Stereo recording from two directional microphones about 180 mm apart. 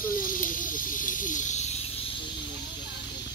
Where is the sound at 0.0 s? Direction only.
50° left (ahead or behind).